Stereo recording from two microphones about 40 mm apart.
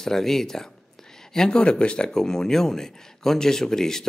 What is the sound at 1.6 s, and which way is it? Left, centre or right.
Speech, left.